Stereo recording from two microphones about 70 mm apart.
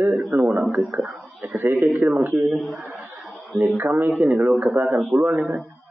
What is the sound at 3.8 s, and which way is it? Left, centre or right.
Speech, right.